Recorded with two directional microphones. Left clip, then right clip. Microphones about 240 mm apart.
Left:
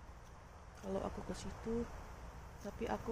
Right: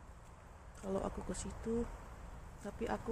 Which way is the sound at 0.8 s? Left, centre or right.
Centre.